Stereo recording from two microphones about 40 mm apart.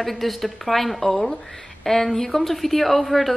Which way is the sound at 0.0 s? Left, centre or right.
Centre.